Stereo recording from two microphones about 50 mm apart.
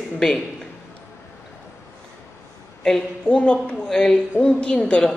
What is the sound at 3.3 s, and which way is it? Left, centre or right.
A woman's voice, left.